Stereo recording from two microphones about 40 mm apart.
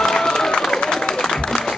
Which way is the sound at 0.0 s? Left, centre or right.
Centre.